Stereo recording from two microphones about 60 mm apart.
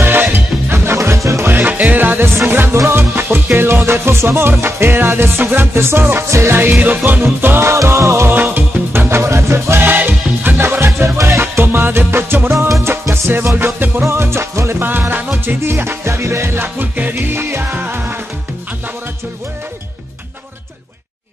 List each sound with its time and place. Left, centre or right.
0.0 s music: right
1.4 s music: right
8.3 s music: right
14.8 s music: right